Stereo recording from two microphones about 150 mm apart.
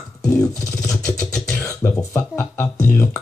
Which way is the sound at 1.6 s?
15° left (ahead or behind).